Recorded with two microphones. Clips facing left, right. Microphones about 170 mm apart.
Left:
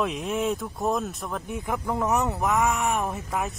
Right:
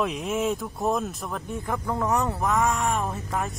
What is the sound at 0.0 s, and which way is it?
Speech, centre (ahead or behind).